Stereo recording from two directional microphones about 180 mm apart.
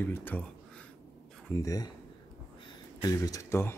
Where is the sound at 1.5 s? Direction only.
20° left (ahead or behind).